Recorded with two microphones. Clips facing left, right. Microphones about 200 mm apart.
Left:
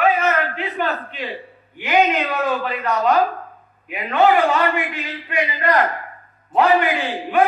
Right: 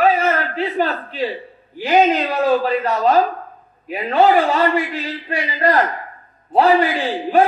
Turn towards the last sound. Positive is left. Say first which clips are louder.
# right 3 dB
turn(degrees=-35)  # may be behind; listen again after turning